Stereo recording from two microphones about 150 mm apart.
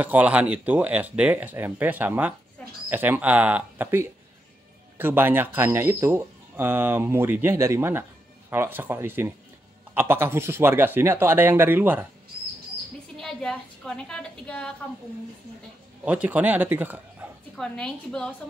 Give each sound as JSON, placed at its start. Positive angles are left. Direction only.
{"t": 0.0, "sound": "speech", "side_deg": -10}
{"t": 13.2, "sound": "a woman's voice", "side_deg": 5}
{"t": 16.0, "sound": "speech", "side_deg": -10}
{"t": 17.6, "sound": "a woman's voice", "side_deg": 5}